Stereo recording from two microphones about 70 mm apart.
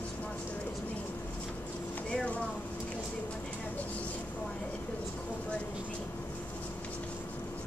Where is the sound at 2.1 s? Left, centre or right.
Centre.